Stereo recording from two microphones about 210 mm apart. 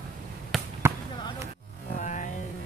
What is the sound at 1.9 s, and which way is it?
Music, 35° left (ahead or behind).